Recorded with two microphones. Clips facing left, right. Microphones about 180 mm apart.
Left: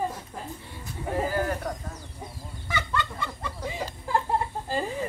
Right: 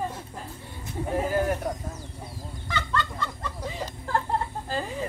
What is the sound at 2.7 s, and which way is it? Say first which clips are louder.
Chicken: even; 10° left (ahead or behind).